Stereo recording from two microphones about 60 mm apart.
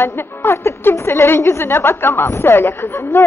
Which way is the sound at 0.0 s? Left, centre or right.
Left.